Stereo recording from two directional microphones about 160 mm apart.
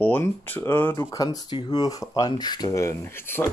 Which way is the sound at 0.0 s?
10° left (ahead or behind).